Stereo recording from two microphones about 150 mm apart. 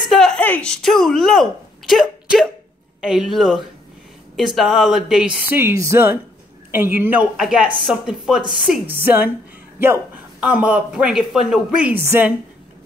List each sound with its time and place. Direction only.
0.0 s a sound: centre (ahead or behind)
0.4 s speech: 10° left (ahead or behind)
5.5 s speech: 15° right (ahead or behind)
8.8 s speech: 15° right (ahead or behind)